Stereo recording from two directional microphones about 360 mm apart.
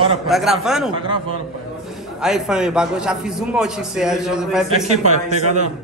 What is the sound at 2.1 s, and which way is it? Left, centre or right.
A man's voice, centre.